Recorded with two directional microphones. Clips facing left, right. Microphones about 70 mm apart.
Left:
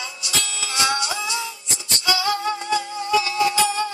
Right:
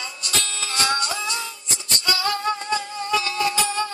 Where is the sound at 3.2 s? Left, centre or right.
Right.